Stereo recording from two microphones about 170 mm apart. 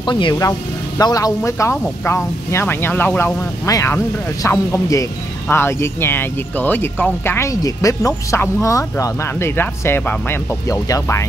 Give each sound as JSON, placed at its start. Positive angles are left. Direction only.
{"t": 0.0, "sound": "speech", "side_deg": 25}